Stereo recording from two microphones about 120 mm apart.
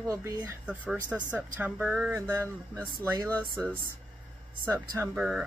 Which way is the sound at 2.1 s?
20° right (ahead or behind).